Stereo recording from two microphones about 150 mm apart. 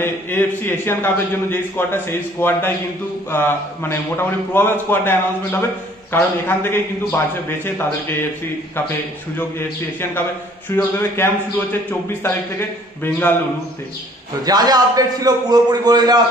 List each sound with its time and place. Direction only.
0.0 s a man's voice: 15° left (ahead or behind)
11.0 s a man's voice: 15° left (ahead or behind)
14.4 s a man's voice: 25° right (ahead or behind)